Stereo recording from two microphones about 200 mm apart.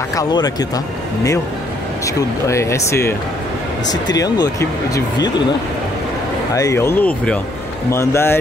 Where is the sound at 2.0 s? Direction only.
15° left (ahead or behind).